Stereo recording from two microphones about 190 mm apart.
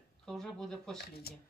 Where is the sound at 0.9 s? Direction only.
55° left (ahead or behind).